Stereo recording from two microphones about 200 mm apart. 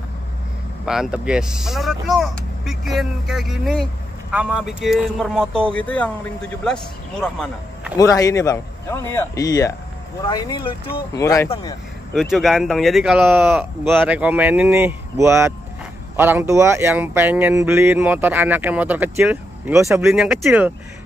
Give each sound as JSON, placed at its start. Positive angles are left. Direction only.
{"t": 0.8, "sound": "a man's voice", "side_deg": -5}
{"t": 8.0, "sound": "a man's voice", "side_deg": 15}
{"t": 12.1, "sound": "speech", "side_deg": 0}